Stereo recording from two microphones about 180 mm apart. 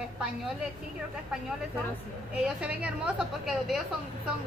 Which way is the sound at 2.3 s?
5° right (ahead or behind).